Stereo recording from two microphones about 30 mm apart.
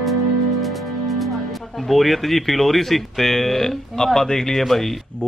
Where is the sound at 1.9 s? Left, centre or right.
Centre.